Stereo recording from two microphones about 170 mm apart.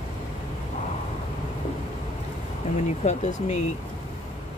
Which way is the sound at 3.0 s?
40° left (ahead or behind).